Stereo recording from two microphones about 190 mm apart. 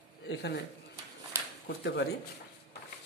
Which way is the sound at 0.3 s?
65° left (ahead or behind).